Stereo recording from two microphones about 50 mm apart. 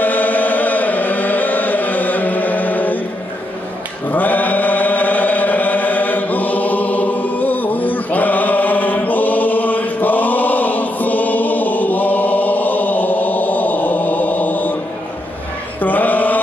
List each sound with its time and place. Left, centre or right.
0.0 s chant: left
4.1 s chant: left
15.8 s mantra: left